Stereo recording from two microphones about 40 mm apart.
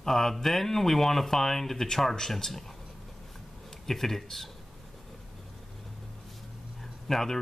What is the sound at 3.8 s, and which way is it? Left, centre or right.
Speech, centre.